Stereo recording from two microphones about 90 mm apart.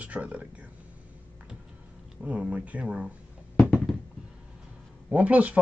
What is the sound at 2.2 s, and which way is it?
Speech, 15° right (ahead or behind).